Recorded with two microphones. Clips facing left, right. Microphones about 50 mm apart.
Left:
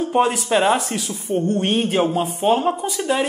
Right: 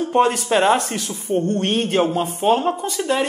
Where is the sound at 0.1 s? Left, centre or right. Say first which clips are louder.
Right 2 dB; centre.